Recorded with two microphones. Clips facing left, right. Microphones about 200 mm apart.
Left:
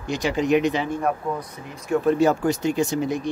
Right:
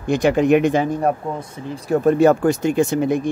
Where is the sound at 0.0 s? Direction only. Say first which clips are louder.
Right 7 dB; 55° right (ahead or behind).